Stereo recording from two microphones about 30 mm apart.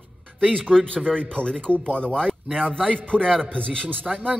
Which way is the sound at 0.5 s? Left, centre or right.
Left.